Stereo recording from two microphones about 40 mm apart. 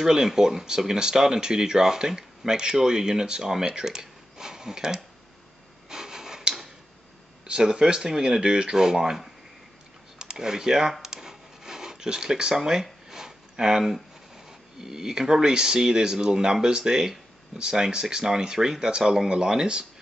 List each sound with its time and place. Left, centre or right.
0.0 s speech: centre
5.9 s rub: centre
7.4 s speech: right
10.1 s a sound: centre
14.3 s speech: centre